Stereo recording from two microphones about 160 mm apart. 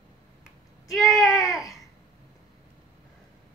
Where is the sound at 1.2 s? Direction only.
Centre (ahead or behind).